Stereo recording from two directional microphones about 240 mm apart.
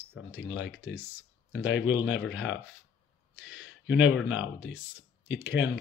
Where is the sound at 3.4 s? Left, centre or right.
Left.